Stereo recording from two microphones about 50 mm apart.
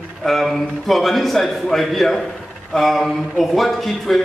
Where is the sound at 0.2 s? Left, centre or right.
Centre.